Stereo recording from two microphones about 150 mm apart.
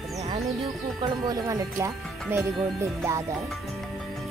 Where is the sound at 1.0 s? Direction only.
25° right (ahead or behind).